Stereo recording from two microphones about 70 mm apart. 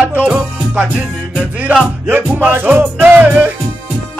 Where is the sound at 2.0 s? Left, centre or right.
Right.